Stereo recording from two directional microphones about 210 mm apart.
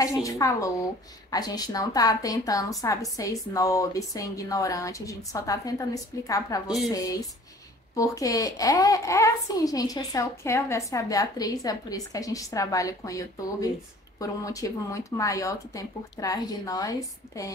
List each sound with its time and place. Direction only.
0.0 s a woman's voice: 15° left (ahead or behind)